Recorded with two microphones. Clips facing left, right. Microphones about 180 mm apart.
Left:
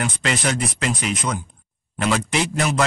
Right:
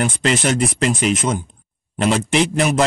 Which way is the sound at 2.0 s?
25° right (ahead or behind).